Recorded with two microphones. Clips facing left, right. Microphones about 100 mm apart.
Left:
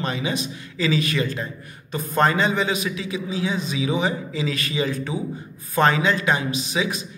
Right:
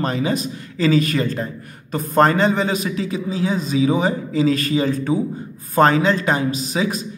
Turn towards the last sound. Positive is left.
turn(degrees=-40)  # may be behind; listen again after turning